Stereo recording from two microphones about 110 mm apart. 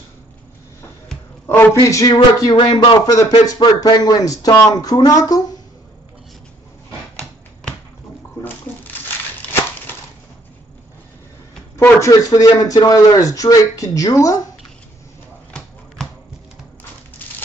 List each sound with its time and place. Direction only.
1.5 s speech: 25° left (ahead or behind)
2.5 s speech: 45° left (ahead or behind)
9.5 s a sound: 20° left (ahead or behind)
11.7 s speech: 25° left (ahead or behind)